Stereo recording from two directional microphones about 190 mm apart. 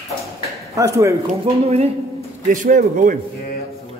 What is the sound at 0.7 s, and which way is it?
Speech, 15° right (ahead or behind).